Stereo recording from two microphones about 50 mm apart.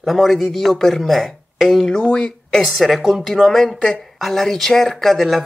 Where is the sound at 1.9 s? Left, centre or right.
Centre.